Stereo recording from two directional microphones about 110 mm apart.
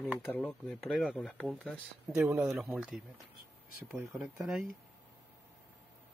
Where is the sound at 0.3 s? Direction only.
15° left (ahead or behind).